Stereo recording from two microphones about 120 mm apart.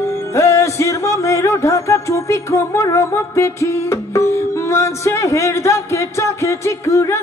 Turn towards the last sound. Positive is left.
turn(degrees=25)  # may be behind; listen again after turning